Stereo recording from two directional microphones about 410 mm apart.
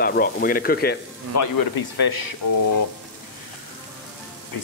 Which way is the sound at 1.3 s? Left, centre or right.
Left.